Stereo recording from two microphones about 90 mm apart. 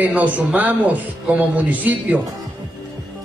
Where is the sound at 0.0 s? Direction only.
20° right (ahead or behind).